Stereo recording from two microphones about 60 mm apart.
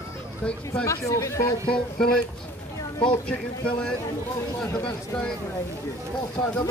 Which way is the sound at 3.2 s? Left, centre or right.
Centre.